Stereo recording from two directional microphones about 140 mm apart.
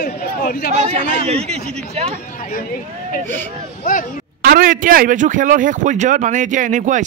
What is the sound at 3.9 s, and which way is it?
Speech, 75° left (ahead or behind).